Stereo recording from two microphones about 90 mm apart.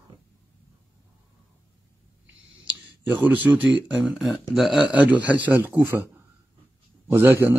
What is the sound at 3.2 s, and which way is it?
Speech, 20° right (ahead or behind).